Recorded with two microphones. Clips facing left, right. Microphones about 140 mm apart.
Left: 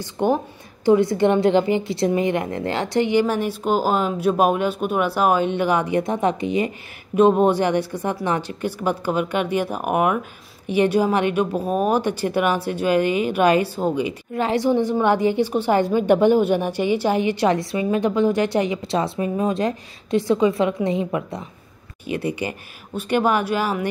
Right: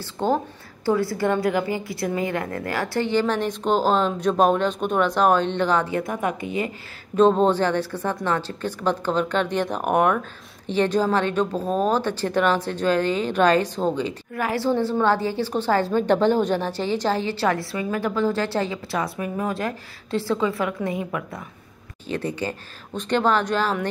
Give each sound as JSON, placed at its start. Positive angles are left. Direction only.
{"t": 0.0, "sound": "a woman's voice", "side_deg": 15}
{"t": 22.0, "sound": "a woman's voice", "side_deg": 10}